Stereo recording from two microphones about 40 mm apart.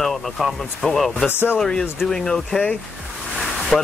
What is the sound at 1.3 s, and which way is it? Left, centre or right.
Speech, left.